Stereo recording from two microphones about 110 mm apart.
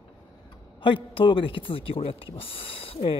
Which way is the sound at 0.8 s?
50° left (ahead or behind).